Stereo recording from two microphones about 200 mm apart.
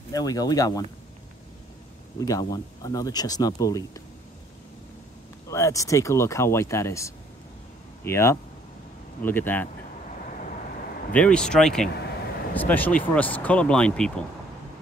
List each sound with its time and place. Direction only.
0.1 s speech: 20° left (ahead or behind)
2.1 s speech: 15° left (ahead or behind)
5.5 s speech: 15° left (ahead or behind)
11.1 s speech: 5° left (ahead or behind)